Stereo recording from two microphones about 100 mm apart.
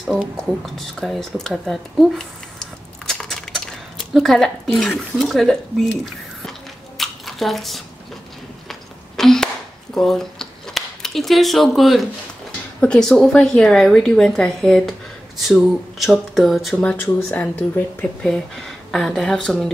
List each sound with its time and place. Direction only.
0.4 s a sound: 5° left (ahead or behind)
4.7 s speech: centre (ahead or behind)
7.0 s squish: centre (ahead or behind)
8.6 s a sound: 5° left (ahead or behind)
9.9 s speech: 5° left (ahead or behind)
16.7 s speech: 15° left (ahead or behind)
18.2 s speech: 5° left (ahead or behind)